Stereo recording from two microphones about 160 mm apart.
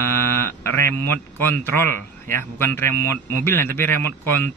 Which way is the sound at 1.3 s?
15° left (ahead or behind).